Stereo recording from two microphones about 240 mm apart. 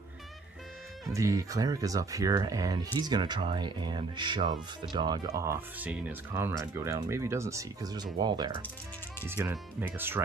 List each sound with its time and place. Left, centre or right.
1.1 s speech: centre